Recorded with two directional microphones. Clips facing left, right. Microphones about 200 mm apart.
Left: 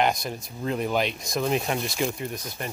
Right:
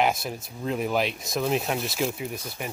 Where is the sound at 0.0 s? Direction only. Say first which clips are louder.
Even; 5° right (ahead or behind).